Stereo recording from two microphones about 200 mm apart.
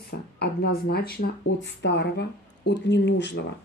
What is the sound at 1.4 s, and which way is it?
Speech, 60° left (ahead or behind).